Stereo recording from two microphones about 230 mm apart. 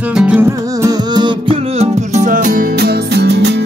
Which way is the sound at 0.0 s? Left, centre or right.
Centre.